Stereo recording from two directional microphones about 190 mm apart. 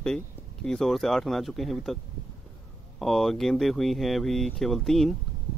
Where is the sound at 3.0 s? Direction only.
Centre (ahead or behind).